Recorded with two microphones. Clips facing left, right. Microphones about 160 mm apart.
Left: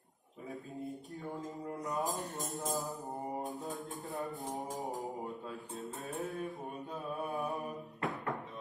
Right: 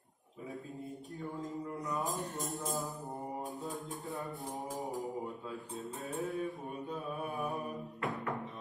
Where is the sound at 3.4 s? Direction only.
20° left (ahead or behind).